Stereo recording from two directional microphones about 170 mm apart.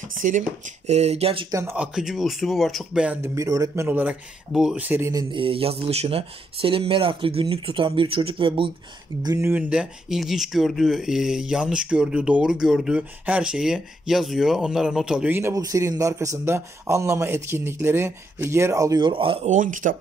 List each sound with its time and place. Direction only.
0.2 s speech: 50° right (ahead or behind)
1.5 s speech: 15° right (ahead or behind)
3.3 s speech: 20° right (ahead or behind)
5.3 s speech: 30° right (ahead or behind)
9.2 s speech: 20° right (ahead or behind)
19.5 s speech: 50° right (ahead or behind)